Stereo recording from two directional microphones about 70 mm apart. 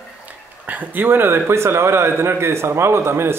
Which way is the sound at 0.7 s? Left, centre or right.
Right.